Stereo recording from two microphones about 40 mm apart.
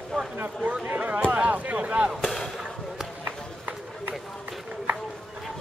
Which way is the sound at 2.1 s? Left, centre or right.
Centre.